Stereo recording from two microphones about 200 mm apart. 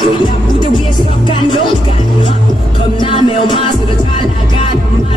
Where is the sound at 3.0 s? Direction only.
25° left (ahead or behind).